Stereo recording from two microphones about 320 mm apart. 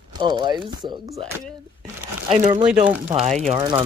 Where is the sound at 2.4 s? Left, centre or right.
Right.